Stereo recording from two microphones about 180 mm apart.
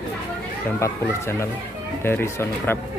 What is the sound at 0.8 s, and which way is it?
Speech, 15° left (ahead or behind).